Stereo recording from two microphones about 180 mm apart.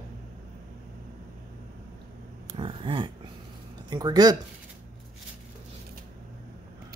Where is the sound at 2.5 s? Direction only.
30° right (ahead or behind).